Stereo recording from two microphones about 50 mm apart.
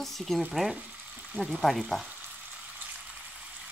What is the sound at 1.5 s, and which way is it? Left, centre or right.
Speech, centre.